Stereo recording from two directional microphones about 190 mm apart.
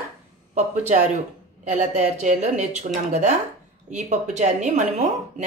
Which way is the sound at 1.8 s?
40° right (ahead or behind).